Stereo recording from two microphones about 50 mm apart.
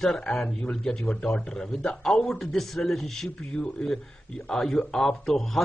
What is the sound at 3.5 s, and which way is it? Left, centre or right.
Speech, centre.